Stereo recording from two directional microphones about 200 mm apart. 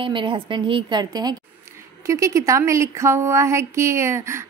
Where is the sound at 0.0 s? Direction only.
25° right (ahead or behind).